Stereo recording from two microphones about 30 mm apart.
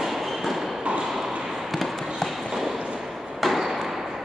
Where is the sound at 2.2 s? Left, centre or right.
Centre.